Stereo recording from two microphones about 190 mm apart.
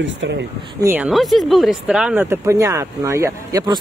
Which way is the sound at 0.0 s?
70° right (ahead or behind).